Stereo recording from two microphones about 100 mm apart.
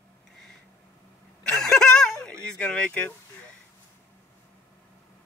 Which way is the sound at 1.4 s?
5° left (ahead or behind).